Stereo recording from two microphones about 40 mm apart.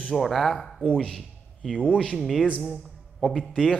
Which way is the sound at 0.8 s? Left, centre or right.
Left.